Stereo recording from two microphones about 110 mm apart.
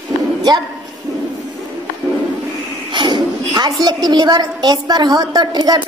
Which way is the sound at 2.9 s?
45° right (ahead or behind).